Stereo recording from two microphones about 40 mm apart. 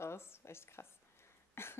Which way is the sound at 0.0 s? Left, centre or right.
Left.